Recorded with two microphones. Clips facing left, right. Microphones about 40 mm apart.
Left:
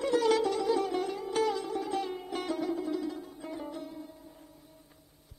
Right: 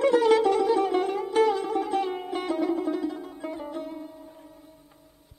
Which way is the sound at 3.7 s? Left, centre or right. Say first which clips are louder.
Right 6 dB; right.